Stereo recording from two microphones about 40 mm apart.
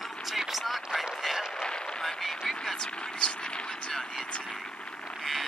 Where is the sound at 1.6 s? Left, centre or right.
Left.